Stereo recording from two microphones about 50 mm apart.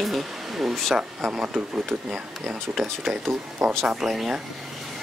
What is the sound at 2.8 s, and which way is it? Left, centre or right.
Speech, centre.